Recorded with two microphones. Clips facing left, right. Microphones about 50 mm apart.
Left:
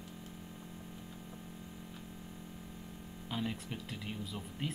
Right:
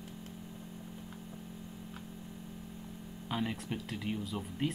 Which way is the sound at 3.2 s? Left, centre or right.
Centre.